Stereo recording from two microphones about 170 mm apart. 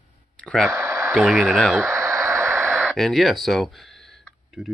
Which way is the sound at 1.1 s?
5° right (ahead or behind).